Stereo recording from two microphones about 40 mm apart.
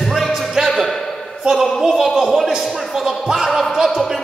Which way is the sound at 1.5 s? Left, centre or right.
Centre.